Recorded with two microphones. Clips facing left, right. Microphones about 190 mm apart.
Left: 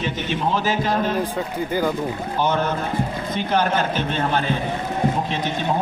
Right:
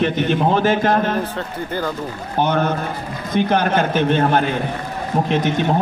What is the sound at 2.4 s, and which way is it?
A man's voice, 55° right (ahead or behind).